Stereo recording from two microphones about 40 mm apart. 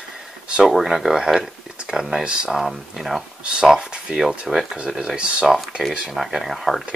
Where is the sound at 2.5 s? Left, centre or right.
Centre.